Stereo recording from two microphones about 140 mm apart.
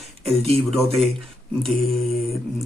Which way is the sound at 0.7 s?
Centre (ahead or behind).